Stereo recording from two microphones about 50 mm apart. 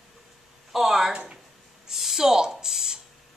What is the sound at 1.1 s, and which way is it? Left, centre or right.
Speech, centre.